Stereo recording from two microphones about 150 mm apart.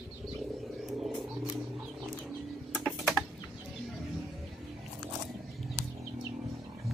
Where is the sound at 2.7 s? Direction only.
Centre (ahead or behind).